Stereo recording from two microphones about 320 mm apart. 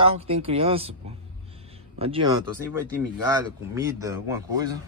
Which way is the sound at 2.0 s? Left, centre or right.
Centre.